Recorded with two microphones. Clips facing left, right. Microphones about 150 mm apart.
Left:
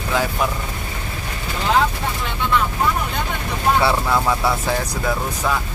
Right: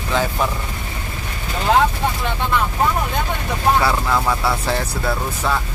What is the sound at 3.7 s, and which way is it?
Speech, 5° left (ahead or behind).